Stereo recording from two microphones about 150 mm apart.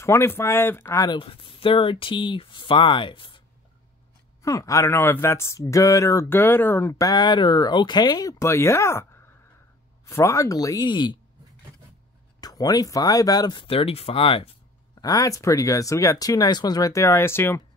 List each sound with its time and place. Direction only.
0.0 s speech: 20° left (ahead or behind)
1.1 s speech: 35° left (ahead or behind)
4.4 s speech: 20° left (ahead or behind)
12.4 s speech: 25° left (ahead or behind)
15.0 s speech: 25° left (ahead or behind)